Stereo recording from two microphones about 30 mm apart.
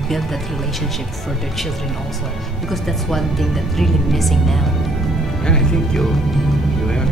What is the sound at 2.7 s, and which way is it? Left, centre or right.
A woman's voice, centre.